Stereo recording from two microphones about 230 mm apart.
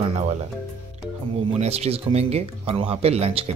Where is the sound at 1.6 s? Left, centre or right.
Right.